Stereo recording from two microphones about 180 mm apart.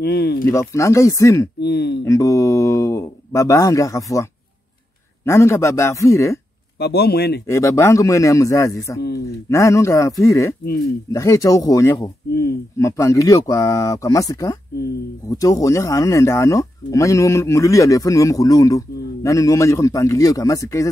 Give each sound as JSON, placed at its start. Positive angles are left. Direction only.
{"t": 0.0, "sound": "speech", "side_deg": 65}
{"t": 0.5, "sound": "speech", "side_deg": 15}
{"t": 1.6, "sound": "speech", "side_deg": 65}
{"t": 2.0, "sound": "speech", "side_deg": 15}
{"t": 6.8, "sound": "speech", "side_deg": 65}
{"t": 7.4, "sound": "speech", "side_deg": 15}